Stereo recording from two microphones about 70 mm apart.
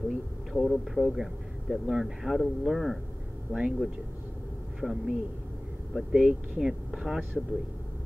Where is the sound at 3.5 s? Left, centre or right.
Centre.